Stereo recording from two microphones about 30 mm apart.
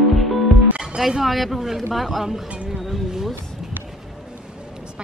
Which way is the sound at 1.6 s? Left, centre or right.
Centre.